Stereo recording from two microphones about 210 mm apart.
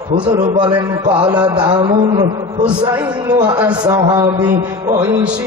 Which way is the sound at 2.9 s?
10° right (ahead or behind).